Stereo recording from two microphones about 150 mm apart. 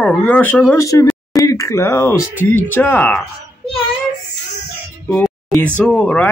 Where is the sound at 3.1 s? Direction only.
5° left (ahead or behind).